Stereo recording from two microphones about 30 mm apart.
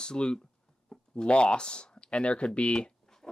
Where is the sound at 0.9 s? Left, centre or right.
Centre.